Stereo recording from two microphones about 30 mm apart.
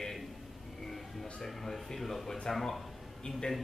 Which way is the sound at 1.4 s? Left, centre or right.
Centre.